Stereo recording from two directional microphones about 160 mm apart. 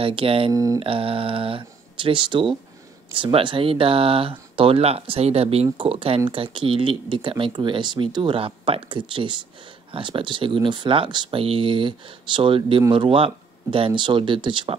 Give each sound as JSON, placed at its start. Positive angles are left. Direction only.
{"t": 0.0, "sound": "speech", "side_deg": -35}
{"t": 0.5, "sound": "speech", "side_deg": -20}
{"t": 0.7, "sound": "speech", "side_deg": -35}